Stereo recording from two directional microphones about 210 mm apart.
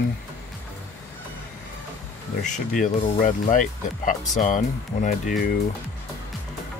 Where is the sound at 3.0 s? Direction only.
40° left (ahead or behind).